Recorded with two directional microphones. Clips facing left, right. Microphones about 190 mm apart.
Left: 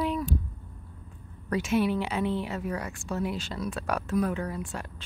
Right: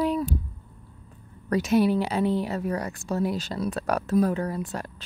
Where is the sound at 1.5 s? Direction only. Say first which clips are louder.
Right 4 dB; 40° right (ahead or behind).